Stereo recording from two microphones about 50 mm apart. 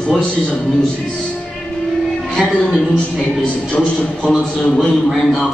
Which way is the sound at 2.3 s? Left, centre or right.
Centre.